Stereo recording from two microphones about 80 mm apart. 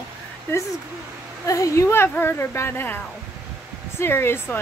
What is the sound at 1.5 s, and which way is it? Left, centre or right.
Speech, left.